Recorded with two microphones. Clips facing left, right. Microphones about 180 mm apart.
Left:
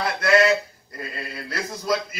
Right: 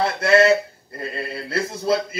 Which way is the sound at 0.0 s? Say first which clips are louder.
Right 3 dB; 25° right (ahead or behind).